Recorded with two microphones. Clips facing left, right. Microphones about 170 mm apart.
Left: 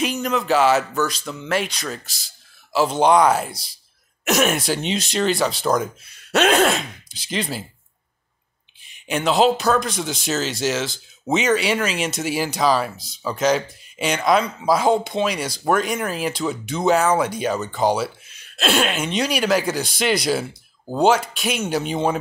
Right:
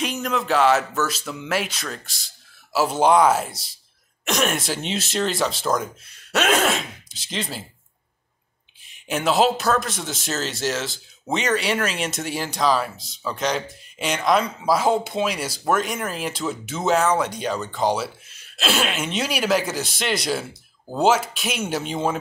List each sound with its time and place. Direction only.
0.0 s a man's voice: centre (ahead or behind)
8.8 s a man's voice: centre (ahead or behind)